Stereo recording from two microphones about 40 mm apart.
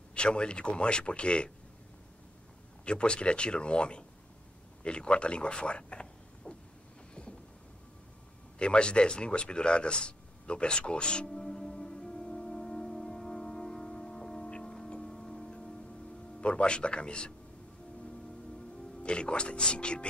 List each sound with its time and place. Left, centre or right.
0.1 s speech: left
2.8 s speech: left
6.5 s vehicle: left
8.5 s speech: left
11.2 s music: centre
16.3 s speech: left
19.0 s speech: left